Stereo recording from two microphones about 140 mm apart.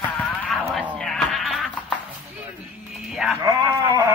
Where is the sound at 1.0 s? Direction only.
5° left (ahead or behind).